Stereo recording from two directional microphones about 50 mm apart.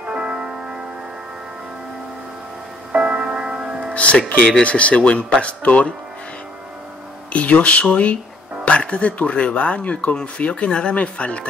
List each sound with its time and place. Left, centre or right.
0.0 s music: centre
2.9 s music: right
3.9 s music: left
4.3 s speech: left
7.3 s speech: left